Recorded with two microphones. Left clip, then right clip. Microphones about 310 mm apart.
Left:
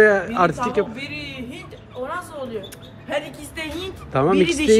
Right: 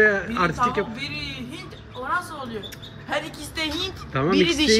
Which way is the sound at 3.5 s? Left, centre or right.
Right.